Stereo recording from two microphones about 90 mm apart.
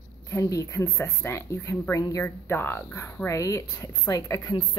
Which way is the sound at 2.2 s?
25° left (ahead or behind).